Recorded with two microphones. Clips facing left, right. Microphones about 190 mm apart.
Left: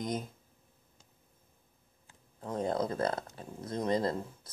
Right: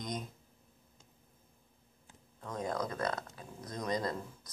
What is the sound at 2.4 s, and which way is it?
Speech, 30° left (ahead or behind).